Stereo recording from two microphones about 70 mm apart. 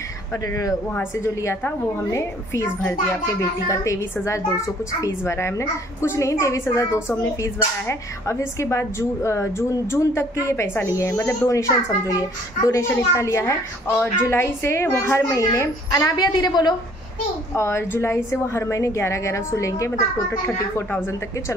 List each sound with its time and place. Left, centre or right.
1.2 s a woman's voice: left
10.9 s a woman's voice: left
16.2 s a woman's voice: left
17.6 s a woman's voice: left